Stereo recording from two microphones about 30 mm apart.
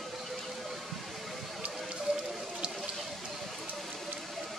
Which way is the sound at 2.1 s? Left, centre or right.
Right.